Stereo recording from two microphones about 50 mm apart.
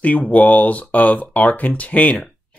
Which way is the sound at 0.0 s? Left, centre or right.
Left.